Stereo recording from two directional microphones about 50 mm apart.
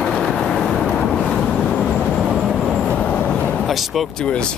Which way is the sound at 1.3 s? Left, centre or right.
Centre.